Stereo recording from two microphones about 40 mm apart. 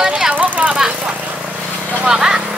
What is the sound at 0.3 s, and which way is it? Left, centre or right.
Vehicle, right.